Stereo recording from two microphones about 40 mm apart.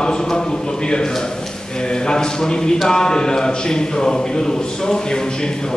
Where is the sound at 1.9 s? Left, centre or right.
Centre.